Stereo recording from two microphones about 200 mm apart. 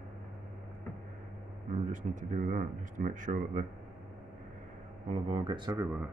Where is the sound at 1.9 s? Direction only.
40° right (ahead or behind).